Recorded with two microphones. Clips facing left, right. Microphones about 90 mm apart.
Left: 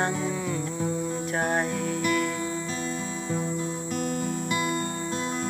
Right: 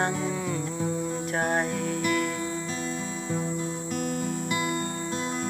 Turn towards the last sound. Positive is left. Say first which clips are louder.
# left 1 dB
turn(degrees=-10)  # may be behind; listen again after turning